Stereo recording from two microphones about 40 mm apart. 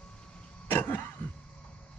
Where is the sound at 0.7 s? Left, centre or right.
Left.